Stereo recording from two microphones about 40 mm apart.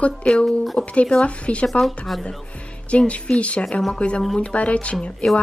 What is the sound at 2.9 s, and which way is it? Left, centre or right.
A woman's voice, left.